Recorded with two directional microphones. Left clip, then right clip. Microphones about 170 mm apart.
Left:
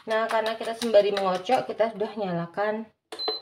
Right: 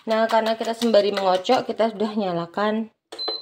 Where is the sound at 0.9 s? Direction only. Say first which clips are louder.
Right 2 dB; 55° right (ahead or behind).